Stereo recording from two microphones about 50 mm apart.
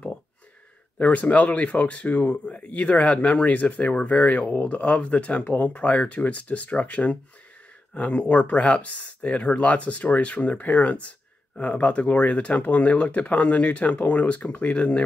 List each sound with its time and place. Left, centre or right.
0.9 s speech: left